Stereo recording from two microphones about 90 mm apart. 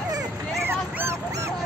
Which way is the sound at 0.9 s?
30° right (ahead or behind).